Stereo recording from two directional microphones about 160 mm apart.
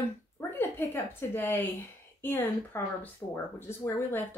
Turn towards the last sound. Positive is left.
turn(degrees=15)  # may be behind; listen again after turning